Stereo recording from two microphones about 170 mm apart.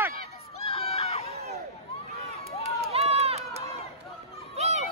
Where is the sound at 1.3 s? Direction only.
40° right (ahead or behind).